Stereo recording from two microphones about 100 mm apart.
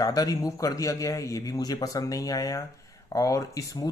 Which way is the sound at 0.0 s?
40° left (ahead or behind).